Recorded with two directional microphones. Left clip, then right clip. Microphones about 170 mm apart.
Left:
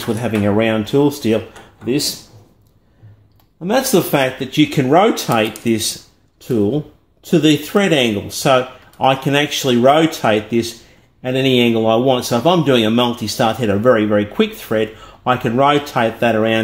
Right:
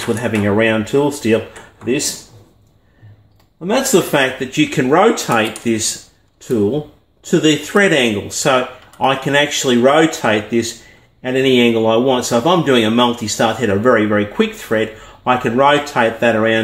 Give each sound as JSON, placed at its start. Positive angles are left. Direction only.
{"t": 0.6, "sound": "a man's voice", "side_deg": 25}
{"t": 3.6, "sound": "a man's voice", "side_deg": 25}
{"t": 7.2, "sound": "a man's voice", "side_deg": 30}